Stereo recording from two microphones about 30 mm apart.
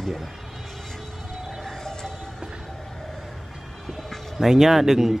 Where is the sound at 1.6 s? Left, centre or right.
Centre.